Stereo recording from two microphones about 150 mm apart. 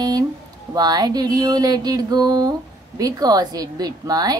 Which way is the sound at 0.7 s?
25° right (ahead or behind).